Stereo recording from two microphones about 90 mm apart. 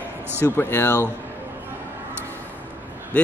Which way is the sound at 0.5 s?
25° left (ahead or behind).